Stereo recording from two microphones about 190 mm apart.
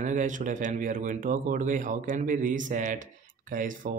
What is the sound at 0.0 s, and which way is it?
Speech, 40° right (ahead or behind).